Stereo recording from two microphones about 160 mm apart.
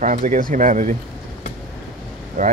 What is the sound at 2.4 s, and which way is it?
Speech, 55° right (ahead or behind).